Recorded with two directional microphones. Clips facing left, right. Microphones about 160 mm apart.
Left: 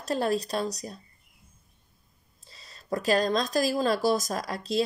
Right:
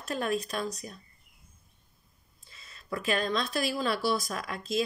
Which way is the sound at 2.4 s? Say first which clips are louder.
Left 3 dB; 35° left (ahead or behind).